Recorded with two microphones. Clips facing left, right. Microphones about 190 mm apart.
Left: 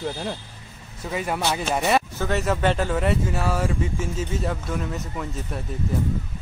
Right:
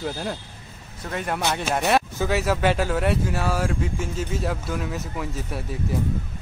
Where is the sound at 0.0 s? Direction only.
Centre (ahead or behind).